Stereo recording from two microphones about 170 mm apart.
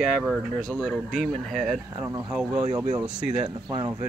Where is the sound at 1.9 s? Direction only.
15° right (ahead or behind).